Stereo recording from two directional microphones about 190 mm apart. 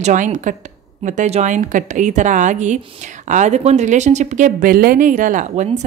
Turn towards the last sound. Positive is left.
turn(degrees=-40)  # may be behind; listen again after turning